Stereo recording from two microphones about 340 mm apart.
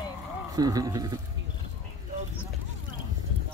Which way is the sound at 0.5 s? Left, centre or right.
Centre.